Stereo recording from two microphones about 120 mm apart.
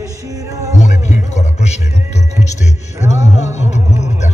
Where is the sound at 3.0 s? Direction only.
75° left (ahead or behind).